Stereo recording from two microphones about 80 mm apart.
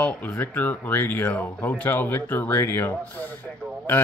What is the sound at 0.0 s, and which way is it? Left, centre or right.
Speech, left.